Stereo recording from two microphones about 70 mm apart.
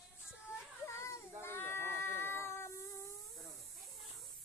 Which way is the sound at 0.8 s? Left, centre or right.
Left.